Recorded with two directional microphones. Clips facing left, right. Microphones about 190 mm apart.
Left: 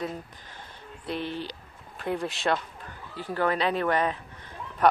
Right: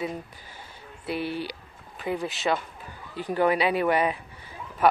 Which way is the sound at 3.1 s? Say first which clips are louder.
Right 4 dB; 15° right (ahead or behind).